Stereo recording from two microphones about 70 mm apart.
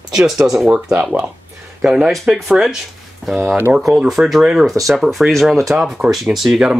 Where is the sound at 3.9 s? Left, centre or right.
Centre.